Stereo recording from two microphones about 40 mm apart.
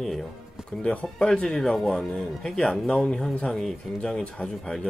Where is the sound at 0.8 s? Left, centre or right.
Left.